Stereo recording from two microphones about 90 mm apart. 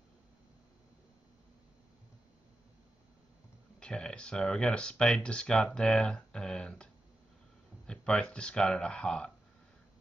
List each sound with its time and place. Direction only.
3.8 s speech: 10° left (ahead or behind)